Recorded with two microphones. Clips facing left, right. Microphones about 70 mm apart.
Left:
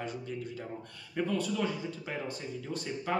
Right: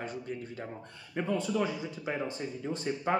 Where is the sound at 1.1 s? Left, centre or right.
Right.